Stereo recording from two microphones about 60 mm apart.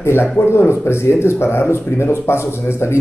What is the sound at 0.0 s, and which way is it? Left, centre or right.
Speech, left.